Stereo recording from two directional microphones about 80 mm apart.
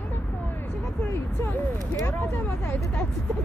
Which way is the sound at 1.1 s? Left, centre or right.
Left.